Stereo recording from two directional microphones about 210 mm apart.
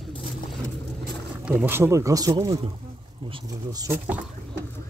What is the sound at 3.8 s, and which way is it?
Speech, 10° right (ahead or behind).